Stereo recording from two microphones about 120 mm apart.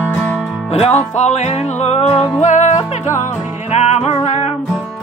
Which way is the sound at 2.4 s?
80° left.